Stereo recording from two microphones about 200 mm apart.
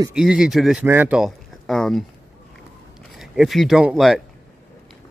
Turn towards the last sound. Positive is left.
turn(degrees=0)  # may be behind; listen again after turning